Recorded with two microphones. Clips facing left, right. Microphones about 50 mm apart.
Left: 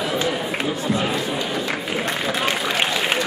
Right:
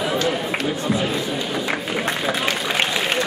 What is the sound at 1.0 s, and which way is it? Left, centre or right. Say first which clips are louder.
Run: even; centre.